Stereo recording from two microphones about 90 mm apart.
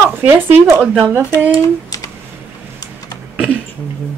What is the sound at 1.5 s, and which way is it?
Speech, 45° left (ahead or behind).